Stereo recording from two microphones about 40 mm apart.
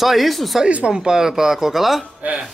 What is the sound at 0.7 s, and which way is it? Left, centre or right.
Speech, right.